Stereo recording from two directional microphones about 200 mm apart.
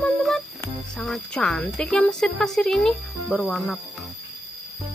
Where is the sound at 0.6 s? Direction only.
5° left (ahead or behind).